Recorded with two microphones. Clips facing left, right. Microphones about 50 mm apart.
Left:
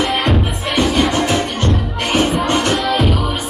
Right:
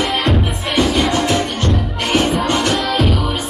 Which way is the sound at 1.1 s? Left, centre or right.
Left.